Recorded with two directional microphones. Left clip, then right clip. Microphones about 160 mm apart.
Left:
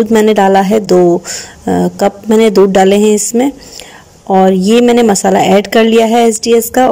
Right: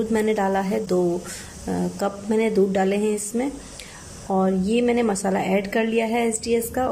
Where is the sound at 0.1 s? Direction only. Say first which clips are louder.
Left 14 dB; 50° left (ahead or behind).